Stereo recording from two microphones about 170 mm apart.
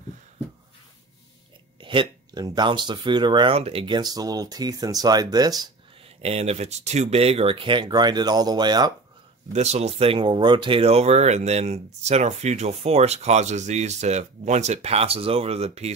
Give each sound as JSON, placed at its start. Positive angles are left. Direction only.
{"t": 1.8, "sound": "speech", "side_deg": -30}
{"t": 6.0, "sound": "speech", "side_deg": -35}
{"t": 9.5, "sound": "speech", "side_deg": -40}